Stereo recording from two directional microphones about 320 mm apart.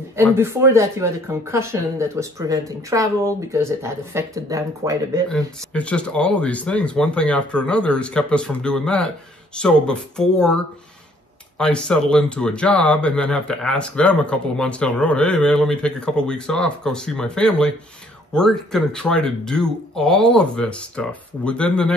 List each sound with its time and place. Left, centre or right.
0.4 s speech: centre
5.3 s speech: centre